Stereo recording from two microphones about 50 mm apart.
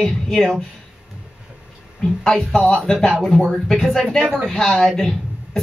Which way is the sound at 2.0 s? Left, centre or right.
Centre.